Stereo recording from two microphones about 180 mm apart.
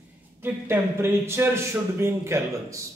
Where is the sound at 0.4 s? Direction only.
15° right (ahead or behind).